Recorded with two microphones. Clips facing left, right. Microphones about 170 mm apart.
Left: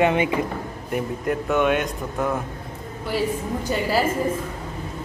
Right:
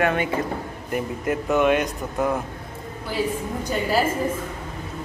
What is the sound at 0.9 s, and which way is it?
A man's voice, centre (ahead or behind).